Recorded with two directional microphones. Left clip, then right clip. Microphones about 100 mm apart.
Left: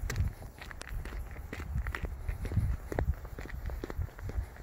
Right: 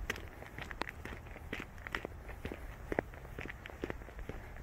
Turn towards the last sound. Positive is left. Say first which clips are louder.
# even
turn(degrees=15)  # may be behind; listen again after turning